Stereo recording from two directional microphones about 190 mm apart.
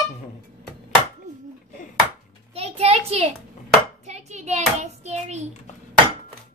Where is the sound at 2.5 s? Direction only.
30° right (ahead or behind).